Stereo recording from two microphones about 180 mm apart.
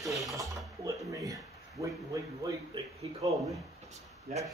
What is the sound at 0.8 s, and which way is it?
Speech, 20° right (ahead or behind).